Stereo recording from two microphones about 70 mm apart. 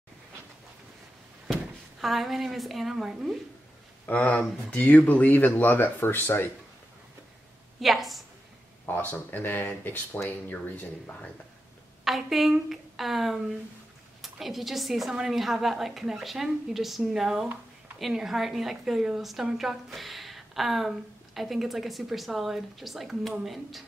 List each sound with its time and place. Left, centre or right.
1.5 s a woman's voice: centre
4.0 s speech: left
7.8 s a woman's voice: centre
8.8 s speech: left
12.0 s a woman's voice: centre